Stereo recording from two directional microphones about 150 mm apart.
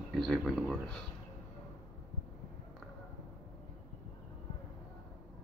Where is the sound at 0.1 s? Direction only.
5° left (ahead or behind).